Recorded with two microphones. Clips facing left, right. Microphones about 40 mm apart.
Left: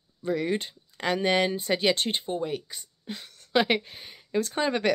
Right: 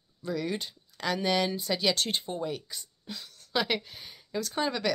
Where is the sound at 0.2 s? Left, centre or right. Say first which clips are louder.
Left 5 dB; left.